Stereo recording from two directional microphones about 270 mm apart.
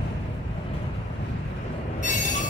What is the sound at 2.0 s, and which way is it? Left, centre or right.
Train, left.